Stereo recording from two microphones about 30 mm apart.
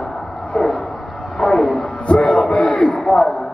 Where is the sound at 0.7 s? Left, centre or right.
Centre; by 2.5 s left.